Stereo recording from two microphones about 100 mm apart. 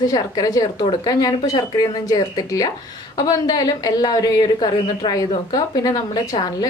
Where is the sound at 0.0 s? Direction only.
40° left (ahead or behind).